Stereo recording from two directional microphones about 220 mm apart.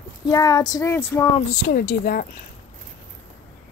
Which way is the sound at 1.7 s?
40° left (ahead or behind).